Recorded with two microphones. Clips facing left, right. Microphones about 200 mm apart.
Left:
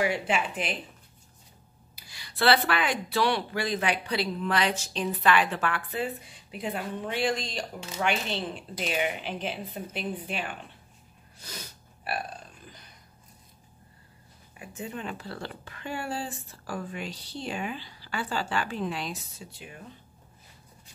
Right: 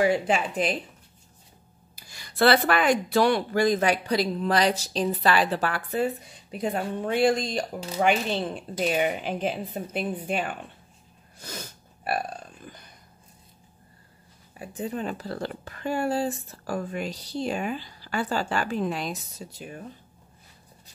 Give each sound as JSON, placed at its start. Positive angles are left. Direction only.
{"t": 0.0, "sound": "speech", "side_deg": -35}
{"t": 2.0, "sound": "speech", "side_deg": -45}
{"t": 11.4, "sound": "sneeze", "side_deg": -50}
{"t": 14.6, "sound": "speech", "side_deg": -35}